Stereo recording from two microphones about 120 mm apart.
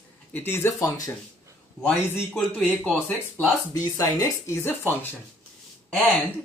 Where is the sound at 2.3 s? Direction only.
15° left (ahead or behind).